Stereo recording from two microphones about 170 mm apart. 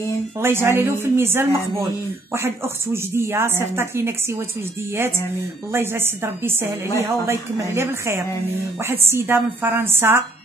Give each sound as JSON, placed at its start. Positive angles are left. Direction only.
{"t": 0.4, "sound": "speech", "side_deg": -15}
{"t": 5.7, "sound": "speech", "side_deg": -15}